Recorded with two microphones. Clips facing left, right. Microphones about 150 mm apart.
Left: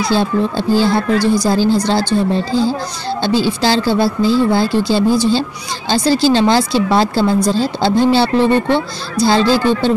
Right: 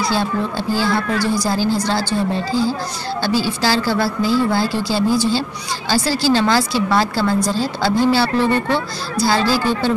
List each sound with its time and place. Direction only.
0.0 s a woman's voice: 25° left (ahead or behind)